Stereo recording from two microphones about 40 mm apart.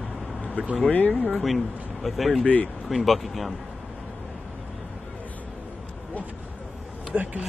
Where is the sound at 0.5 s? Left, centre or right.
Right.